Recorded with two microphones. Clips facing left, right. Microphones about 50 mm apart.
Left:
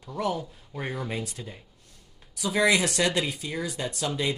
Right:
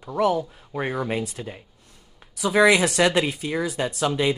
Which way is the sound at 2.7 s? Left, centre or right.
Right.